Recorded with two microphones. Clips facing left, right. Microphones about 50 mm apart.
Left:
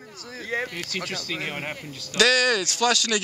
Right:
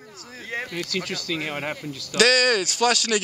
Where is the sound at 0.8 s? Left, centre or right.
Left.